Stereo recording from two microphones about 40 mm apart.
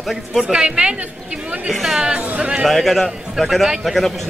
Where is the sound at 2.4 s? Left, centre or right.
Right.